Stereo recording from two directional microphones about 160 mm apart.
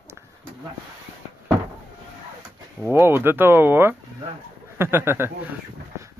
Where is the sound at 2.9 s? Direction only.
15° right (ahead or behind).